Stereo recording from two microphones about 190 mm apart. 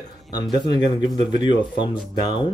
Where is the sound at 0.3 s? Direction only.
20° left (ahead or behind).